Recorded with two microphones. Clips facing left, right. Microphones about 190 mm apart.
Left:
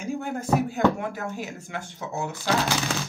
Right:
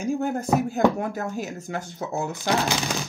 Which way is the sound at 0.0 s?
45° right (ahead or behind).